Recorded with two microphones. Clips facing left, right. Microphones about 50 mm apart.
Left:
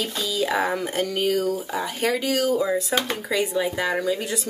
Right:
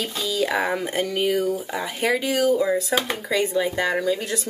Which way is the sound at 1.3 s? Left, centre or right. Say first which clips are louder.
Even; right.